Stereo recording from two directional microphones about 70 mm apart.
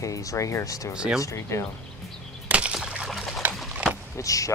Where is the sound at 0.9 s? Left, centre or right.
Centre.